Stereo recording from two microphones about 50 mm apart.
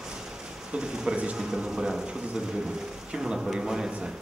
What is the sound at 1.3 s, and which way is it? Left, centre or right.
Speech, centre.